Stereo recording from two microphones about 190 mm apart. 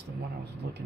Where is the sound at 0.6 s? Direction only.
65° right (ahead or behind).